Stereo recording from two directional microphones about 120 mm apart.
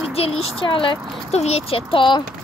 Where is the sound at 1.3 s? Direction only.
60° left (ahead or behind); by 2.3 s 40° left (ahead or behind).